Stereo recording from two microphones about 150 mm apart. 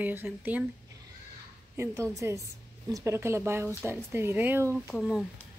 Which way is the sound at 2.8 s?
20° right (ahead or behind).